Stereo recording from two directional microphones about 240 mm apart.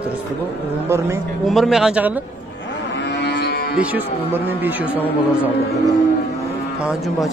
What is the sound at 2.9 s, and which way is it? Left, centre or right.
Cattle, left.